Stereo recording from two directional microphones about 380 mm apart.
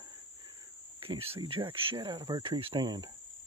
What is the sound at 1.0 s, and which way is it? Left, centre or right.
Speech, centre.